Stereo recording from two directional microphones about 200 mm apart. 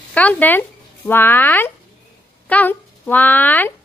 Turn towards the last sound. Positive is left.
turn(degrees=10)  # may be behind; listen again after turning